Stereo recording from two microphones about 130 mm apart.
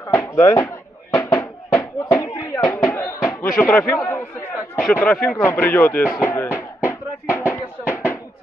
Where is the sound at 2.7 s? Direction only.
15° left (ahead or behind).